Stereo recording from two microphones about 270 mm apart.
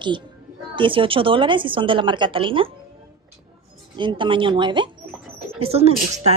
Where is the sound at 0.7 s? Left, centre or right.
Centre.